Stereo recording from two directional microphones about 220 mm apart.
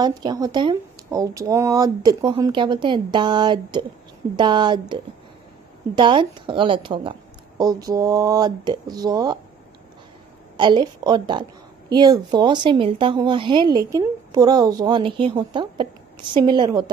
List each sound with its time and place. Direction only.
0.0 s speech: 20° right (ahead or behind)
10.6 s speech: 20° right (ahead or behind)